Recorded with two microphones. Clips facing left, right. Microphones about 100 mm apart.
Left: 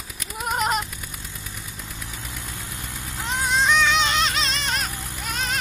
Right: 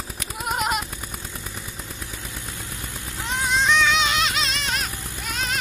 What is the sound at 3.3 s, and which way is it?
Music, centre (ahead or behind).